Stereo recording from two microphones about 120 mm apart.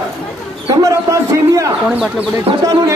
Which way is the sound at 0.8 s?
25° right (ahead or behind).